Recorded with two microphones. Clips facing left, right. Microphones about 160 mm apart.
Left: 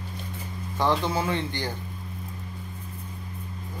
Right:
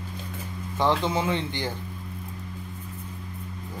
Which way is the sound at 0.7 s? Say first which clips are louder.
Right 1 dB; 20° right (ahead or behind).